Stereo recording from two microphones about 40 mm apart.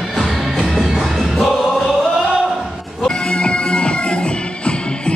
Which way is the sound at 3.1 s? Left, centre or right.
Left.